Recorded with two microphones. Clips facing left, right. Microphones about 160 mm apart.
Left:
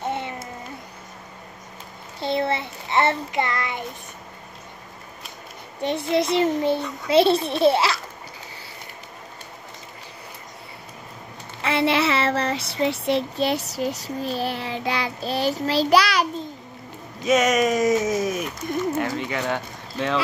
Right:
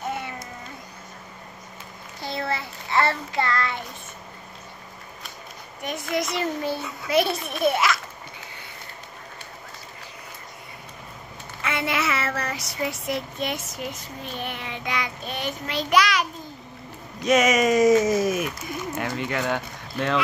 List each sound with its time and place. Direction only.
2.1 s a child's voice: 25° left (ahead or behind)
5.8 s a child's voice: 30° left (ahead or behind)
11.6 s child singing: 30° left (ahead or behind)
17.2 s speech: centre (ahead or behind)